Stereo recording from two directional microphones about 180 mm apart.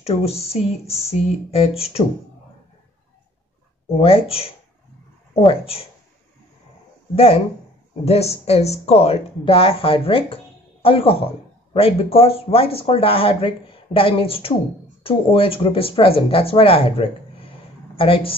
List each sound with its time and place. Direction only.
0.0 s speech: 35° left (ahead or behind)
4.0 s speech: 30° left (ahead or behind)
8.0 s speech: 35° left (ahead or behind)